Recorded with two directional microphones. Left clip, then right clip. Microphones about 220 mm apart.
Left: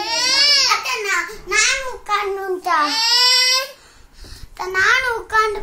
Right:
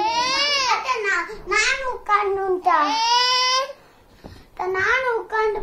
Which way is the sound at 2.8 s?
15° left (ahead or behind).